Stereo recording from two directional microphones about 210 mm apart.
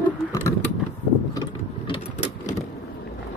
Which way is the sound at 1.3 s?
20° left (ahead or behind).